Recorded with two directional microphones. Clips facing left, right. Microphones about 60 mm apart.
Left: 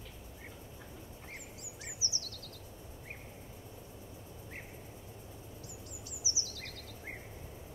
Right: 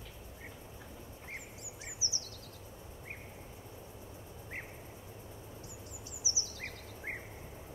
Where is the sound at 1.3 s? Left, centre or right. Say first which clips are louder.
Right 4 dB; right.